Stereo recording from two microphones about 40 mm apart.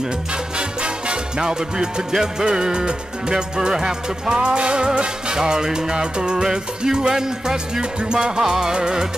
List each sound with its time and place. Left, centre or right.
0.6 s music: right